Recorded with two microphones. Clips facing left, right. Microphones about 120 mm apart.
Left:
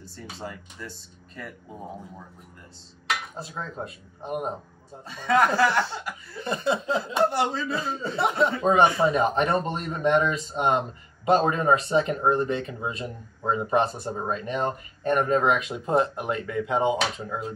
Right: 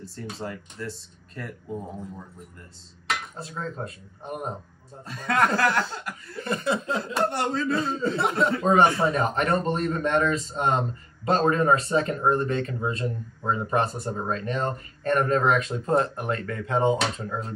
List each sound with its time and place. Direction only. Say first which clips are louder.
0.0 s speech: right 3 dB; centre (ahead or behind)
3.1 s dishes: even; 10° left (ahead or behind)
3.8 s speech: even; 10° left (ahead or behind)
5.0 s speech: left 2 dB; centre (ahead or behind)
6.4 s speech: left 1 dB; 25° left (ahead or behind)
7.2 s speech: left 2 dB; centre (ahead or behind)
9.1 s speech: left 1 dB; 25° left (ahead or behind); by 17.5 s 10° left (ahead or behind)